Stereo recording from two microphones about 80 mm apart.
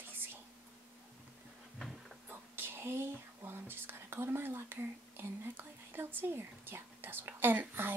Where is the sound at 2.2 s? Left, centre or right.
Right.